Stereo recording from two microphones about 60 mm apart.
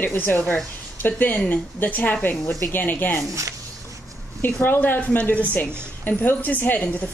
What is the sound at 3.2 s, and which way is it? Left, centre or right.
Speech, right.